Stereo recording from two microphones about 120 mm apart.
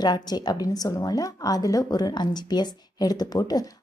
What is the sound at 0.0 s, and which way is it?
A woman's voice, 35° left (ahead or behind).